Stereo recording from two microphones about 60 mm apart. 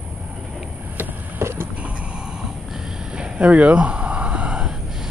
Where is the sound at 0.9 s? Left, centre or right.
Right.